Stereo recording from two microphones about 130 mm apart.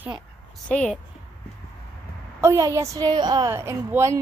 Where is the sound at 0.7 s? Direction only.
5° left (ahead or behind).